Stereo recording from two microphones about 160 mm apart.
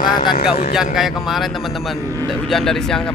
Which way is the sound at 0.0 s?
30° left (ahead or behind).